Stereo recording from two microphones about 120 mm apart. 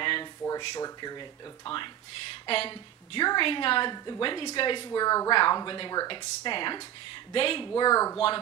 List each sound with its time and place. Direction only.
0.0 s a sound: 45° left (ahead or behind)
0.6 s a woman's voice: 35° left (ahead or behind)
2.4 s a woman's voice: 50° left (ahead or behind)
3.9 s a woman's voice: 35° left (ahead or behind)
4.8 s a woman's voice: 30° left (ahead or behind)